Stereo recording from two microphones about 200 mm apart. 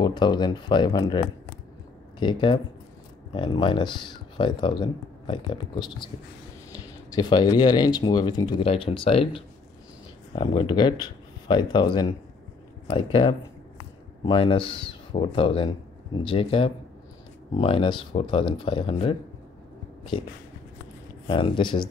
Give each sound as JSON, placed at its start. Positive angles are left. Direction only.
{"t": 0.0, "sound": "speech", "side_deg": 20}
{"t": 21.3, "sound": "speech", "side_deg": 25}